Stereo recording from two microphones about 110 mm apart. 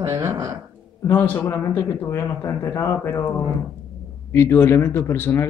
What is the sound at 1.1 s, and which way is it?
A man's voice, 15° left (ahead or behind).